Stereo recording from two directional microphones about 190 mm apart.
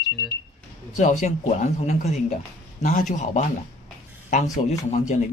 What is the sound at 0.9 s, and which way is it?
Speech, 40° left (ahead or behind).